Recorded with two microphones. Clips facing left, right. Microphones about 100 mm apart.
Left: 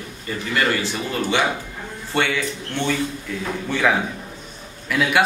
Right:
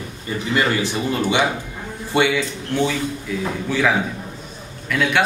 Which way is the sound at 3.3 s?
5° right (ahead or behind).